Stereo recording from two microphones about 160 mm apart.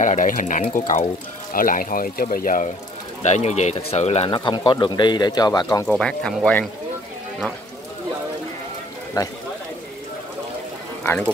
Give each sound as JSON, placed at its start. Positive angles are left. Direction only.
{"t": 0.0, "sound": "speech", "side_deg": 55}
{"t": 3.2, "sound": "speech", "side_deg": 45}
{"t": 4.3, "sound": "speech", "side_deg": 30}
{"t": 5.9, "sound": "speech", "side_deg": 5}